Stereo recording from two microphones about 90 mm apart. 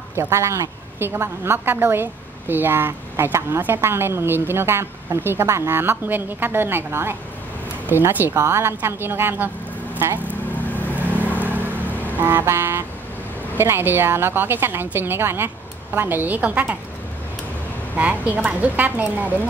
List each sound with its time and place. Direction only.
0.1 s a woman's voice: 30° right (ahead or behind)
10.6 s vehicle: 20° left (ahead or behind)
11.0 s vehicle: 20° right (ahead or behind)
11.7 s vehicle: 20° left (ahead or behind)
12.2 s a woman's voice: 25° right (ahead or behind)
17.9 s a woman's voice: 15° right (ahead or behind)